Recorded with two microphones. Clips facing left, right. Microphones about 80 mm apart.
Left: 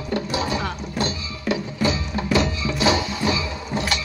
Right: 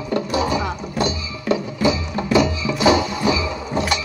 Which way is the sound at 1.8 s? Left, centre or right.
Centre.